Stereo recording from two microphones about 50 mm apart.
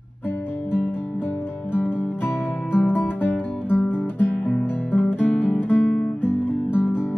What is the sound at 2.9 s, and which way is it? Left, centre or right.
Music, left.